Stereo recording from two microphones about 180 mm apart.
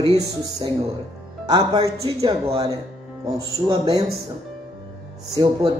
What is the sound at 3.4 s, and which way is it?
Music, 20° right (ahead or behind).